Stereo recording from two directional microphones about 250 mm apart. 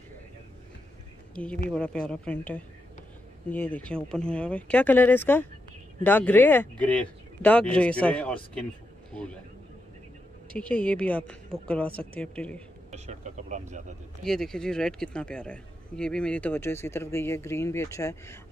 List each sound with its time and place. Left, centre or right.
1.3 s speech: centre
10.5 s speech: centre
12.9 s speech: right
14.2 s speech: centre